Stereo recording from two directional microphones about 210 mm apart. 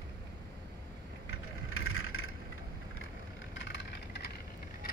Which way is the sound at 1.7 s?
80° left.